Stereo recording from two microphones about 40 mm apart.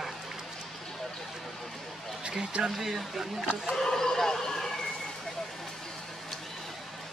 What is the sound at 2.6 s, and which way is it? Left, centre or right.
Speech, centre.